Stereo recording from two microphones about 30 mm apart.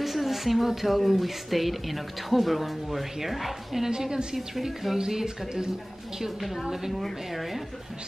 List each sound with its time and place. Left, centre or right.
0.0 s speech: centre
3.8 s speech: centre
7.0 s speech: centre